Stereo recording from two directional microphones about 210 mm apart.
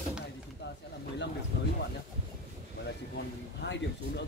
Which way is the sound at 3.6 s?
55° left (ahead or behind).